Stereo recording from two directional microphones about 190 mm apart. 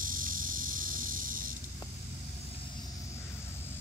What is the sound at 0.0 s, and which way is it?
Cricket, 45° right (ahead or behind).